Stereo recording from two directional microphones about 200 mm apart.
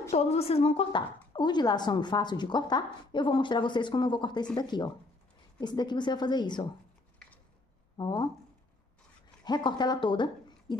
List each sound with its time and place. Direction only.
0.1 s a woman's voice: 35° left (ahead or behind)
8.0 s speech: 25° left (ahead or behind)
9.4 s speech: 20° left (ahead or behind)